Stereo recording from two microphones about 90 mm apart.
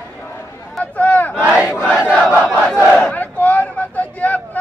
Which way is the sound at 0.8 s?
20° left (ahead or behind).